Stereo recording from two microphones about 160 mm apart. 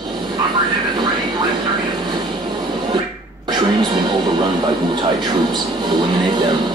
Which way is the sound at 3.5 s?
25° right (ahead or behind).